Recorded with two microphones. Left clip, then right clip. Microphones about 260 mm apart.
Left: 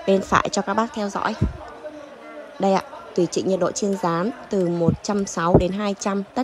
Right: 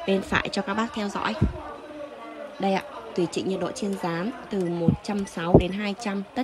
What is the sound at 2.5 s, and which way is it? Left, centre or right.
A woman's voice, centre.